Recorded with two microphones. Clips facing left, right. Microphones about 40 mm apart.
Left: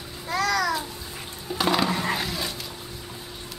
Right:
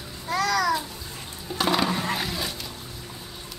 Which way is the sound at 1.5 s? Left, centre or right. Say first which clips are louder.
Even; centre.